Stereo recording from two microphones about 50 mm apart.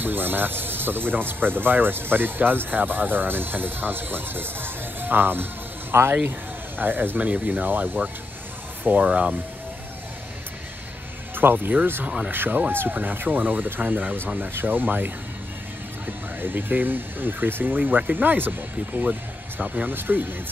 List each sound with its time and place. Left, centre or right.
0.0 s speech: right
7.2 s speech: right
9.0 s speech: right
11.3 s speech: right
12.7 s speech: right
16.3 s speech: right
19.6 s speech: right
19.9 s speech: right